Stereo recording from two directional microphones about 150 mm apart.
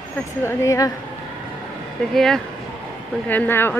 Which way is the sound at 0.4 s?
15° left (ahead or behind).